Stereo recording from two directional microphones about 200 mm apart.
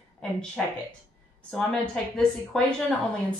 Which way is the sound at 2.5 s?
Centre (ahead or behind).